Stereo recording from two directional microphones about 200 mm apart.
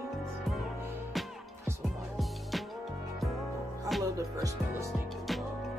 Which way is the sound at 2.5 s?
Centre (ahead or behind).